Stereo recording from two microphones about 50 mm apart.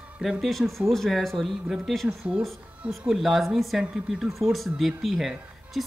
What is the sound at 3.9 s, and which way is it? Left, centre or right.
Speech, centre.